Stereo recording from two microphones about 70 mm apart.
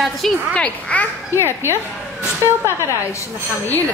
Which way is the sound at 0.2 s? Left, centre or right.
Centre.